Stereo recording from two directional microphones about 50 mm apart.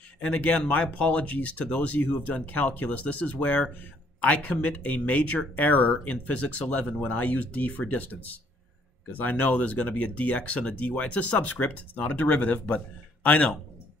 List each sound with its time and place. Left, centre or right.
0.2 s speech: left